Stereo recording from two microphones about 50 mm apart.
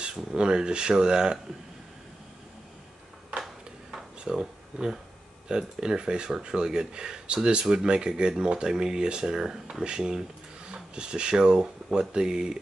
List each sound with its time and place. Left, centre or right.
0.0 s speech: centre
3.9 s a sound: centre
5.5 s speech: centre